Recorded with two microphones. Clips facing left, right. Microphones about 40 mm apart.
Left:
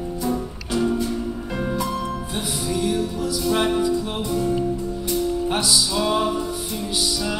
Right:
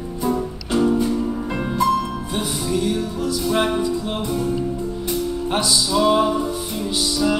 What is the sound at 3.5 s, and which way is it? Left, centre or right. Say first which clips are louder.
Music: even; centre.